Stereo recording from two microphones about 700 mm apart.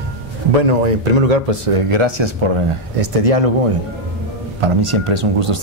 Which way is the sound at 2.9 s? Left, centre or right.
Right.